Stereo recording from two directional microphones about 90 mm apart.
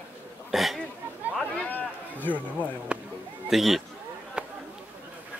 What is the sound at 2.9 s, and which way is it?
Speech, 10° right (ahead or behind).